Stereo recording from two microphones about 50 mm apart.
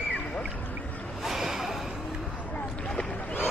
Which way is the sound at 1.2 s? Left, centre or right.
Centre.